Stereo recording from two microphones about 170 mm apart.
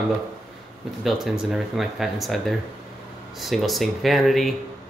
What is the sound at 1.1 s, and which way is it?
Speech, centre (ahead or behind).